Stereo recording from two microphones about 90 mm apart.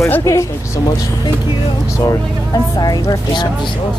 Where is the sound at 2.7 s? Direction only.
50° left (ahead or behind).